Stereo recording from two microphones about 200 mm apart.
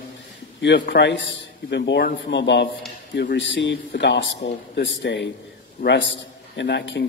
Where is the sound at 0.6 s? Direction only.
65° left (ahead or behind).